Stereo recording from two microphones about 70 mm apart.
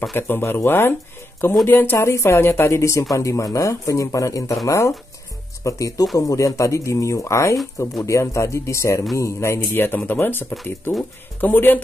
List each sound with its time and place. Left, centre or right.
0.1 s speech: left
11.4 s a man's voice: left